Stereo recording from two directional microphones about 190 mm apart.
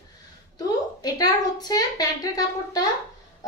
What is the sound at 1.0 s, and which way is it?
A woman's voice, 20° left (ahead or behind).